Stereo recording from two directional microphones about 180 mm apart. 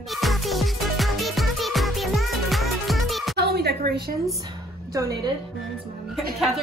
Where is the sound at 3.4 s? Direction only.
60° right (ahead or behind).